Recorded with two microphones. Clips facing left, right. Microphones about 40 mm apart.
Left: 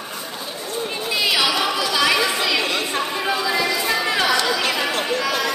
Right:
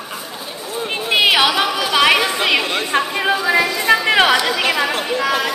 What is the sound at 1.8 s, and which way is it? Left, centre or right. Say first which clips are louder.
Chatter: right 6 dB; right.